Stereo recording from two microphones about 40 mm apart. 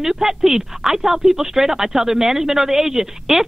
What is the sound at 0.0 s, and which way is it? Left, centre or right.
Speech, centre.